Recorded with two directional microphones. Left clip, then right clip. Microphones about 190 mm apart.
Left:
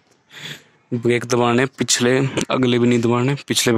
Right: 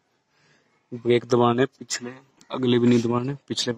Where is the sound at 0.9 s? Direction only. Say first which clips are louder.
Left 2 dB; 15° left (ahead or behind).